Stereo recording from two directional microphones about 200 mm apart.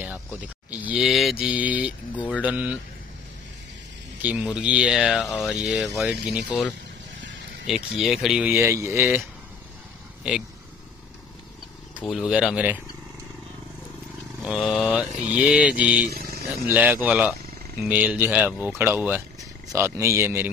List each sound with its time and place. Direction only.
0.7 s speech: 5° right (ahead or behind)
4.2 s speech: 5° right (ahead or behind)
12.1 s speech: centre (ahead or behind)
14.4 s speech: 5° right (ahead or behind)
15.1 s speech: 35° right (ahead or behind)
15.4 s speech: 5° right (ahead or behind)
16.0 s a man's voice: 50° right (ahead or behind)
16.6 s speech: 10° right (ahead or behind)